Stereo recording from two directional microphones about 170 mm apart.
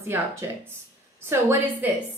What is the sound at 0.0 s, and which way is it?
A woman's voice, 15° right (ahead or behind).